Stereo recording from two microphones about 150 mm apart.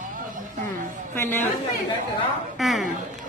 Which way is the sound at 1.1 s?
15° left (ahead or behind).